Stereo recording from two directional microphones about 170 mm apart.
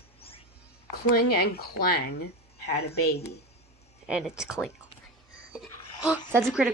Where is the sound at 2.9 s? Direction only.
70° left (ahead or behind).